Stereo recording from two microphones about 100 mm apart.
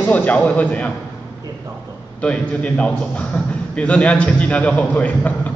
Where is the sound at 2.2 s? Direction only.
10° left (ahead or behind).